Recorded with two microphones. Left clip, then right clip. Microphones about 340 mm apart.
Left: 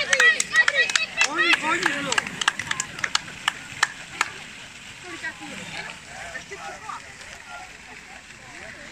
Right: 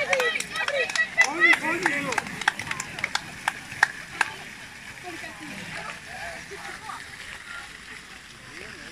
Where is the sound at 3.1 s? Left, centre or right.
Centre.